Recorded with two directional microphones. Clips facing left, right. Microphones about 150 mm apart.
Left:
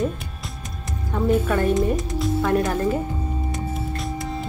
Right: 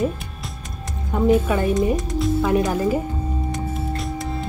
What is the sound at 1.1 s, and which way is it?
Speech, 10° right (ahead or behind).